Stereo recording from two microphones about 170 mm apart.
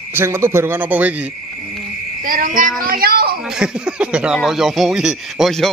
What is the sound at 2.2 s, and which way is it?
Speech, 55° right (ahead or behind).